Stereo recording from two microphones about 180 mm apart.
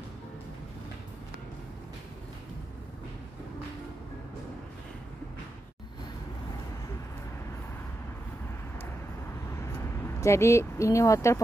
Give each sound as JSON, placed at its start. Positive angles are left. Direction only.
{"t": 10.0, "sound": "speech", "side_deg": 15}